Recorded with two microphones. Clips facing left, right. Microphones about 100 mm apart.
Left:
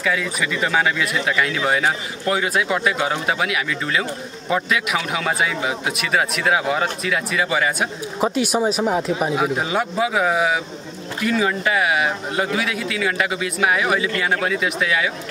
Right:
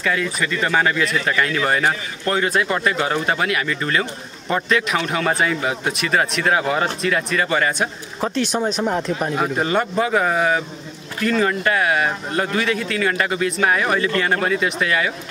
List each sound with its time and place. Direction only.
0.0 s speech: 5° left (ahead or behind)